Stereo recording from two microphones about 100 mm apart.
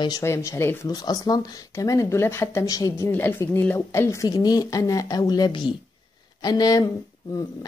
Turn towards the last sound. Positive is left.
turn(degrees=35)  # may be behind; listen again after turning